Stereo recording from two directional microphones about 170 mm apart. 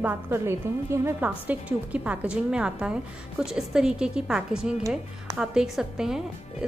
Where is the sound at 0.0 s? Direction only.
10° right (ahead or behind).